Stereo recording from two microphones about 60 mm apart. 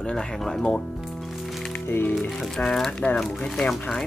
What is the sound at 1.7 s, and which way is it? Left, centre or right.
Music, left.